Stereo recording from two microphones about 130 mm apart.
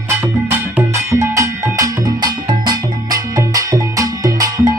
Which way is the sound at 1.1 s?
25° right (ahead or behind).